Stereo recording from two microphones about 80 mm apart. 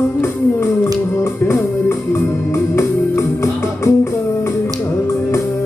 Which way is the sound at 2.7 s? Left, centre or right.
Left.